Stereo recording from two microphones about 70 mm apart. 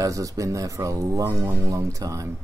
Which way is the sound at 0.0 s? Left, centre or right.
Right.